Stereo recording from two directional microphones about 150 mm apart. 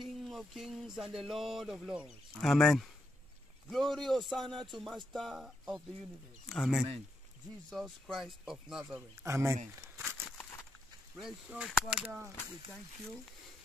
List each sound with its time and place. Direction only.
0.0 s speech: centre (ahead or behind)
9.2 s speech: 20° right (ahead or behind)
11.1 s speech: 5° right (ahead or behind)